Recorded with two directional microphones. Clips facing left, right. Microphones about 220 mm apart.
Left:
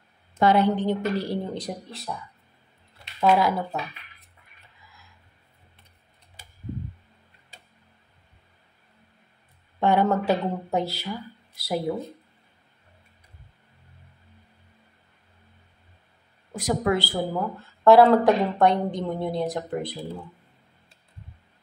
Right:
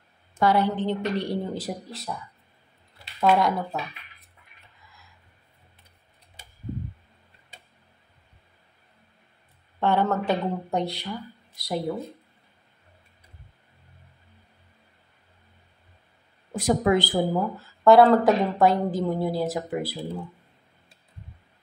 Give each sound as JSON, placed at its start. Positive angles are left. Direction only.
{"t": 0.4, "sound": "a woman's voice", "side_deg": 20}
{"t": 4.8, "sound": "a sound", "side_deg": 0}
{"t": 9.8, "sound": "a woman's voice", "side_deg": 15}
{"t": 16.5, "sound": "speech", "side_deg": -25}
{"t": 17.6, "sound": "a woman's voice", "side_deg": 0}